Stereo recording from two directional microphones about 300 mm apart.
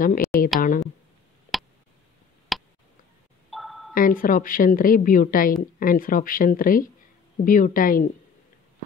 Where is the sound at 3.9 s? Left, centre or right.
Left.